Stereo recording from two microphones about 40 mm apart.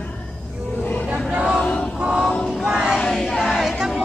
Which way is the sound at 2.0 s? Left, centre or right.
Centre.